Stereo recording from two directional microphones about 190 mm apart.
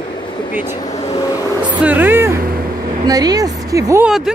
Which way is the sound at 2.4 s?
50° right (ahead or behind).